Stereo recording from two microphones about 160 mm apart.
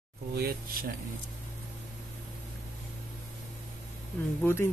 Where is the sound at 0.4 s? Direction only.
70° right (ahead or behind).